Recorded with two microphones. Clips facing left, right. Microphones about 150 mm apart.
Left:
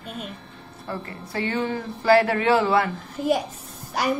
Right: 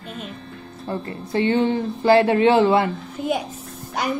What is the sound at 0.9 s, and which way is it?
Speech, 20° right (ahead or behind).